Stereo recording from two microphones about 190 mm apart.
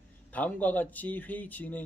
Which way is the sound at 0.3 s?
10° left (ahead or behind).